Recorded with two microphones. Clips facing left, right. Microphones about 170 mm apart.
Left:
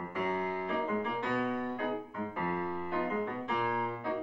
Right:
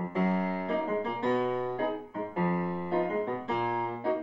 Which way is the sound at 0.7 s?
30° right (ahead or behind).